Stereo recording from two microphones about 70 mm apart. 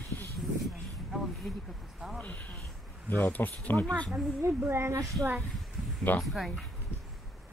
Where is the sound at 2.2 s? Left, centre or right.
Left.